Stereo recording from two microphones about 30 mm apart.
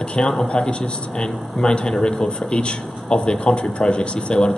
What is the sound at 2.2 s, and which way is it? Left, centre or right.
A man's voice, left.